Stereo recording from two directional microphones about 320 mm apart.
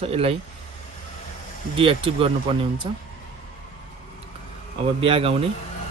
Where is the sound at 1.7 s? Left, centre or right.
Centre.